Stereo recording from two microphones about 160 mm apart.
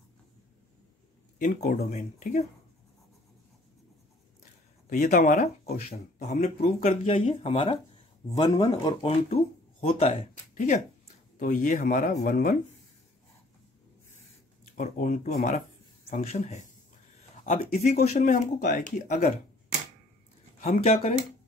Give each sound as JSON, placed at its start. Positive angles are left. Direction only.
{"t": 1.4, "sound": "speech", "side_deg": 60}
{"t": 1.9, "sound": "speech", "side_deg": 45}
{"t": 4.8, "sound": "speech", "side_deg": 55}
{"t": 9.0, "sound": "speech", "side_deg": 35}
{"t": 10.1, "sound": "speech", "side_deg": 55}
{"t": 14.6, "sound": "speech", "side_deg": 55}
{"t": 20.6, "sound": "speech", "side_deg": 45}